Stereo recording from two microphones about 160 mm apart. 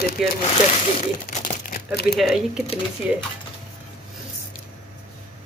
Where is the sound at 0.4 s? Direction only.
40° left (ahead or behind).